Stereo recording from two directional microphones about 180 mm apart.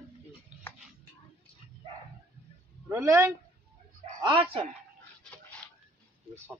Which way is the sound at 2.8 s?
15° right (ahead or behind).